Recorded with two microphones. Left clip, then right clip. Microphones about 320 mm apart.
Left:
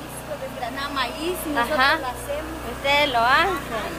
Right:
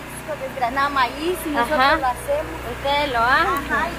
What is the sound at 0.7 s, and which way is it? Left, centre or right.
Speech, centre.